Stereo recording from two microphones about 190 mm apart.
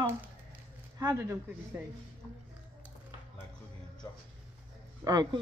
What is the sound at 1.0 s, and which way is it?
Speech, 15° right (ahead or behind).